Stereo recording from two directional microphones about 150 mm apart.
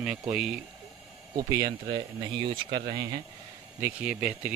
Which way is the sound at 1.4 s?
25° right (ahead or behind).